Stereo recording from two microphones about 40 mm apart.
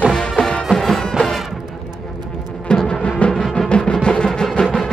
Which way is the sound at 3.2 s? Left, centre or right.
Left.